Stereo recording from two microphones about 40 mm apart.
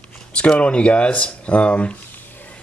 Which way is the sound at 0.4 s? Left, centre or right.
Left.